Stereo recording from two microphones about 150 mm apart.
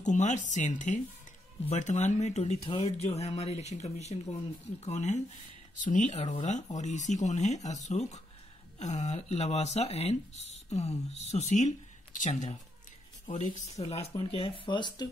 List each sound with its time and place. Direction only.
0.0 s speech: 55° left (ahead or behind); by 15.0 s 30° left (ahead or behind)